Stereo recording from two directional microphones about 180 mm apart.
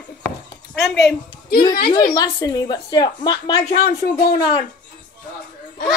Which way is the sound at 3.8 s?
55° left (ahead or behind).